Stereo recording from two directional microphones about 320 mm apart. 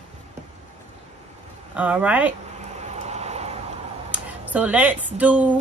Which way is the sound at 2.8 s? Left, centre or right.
Right.